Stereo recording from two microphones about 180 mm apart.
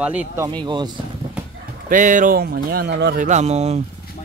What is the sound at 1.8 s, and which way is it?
Speech, 45° right (ahead or behind).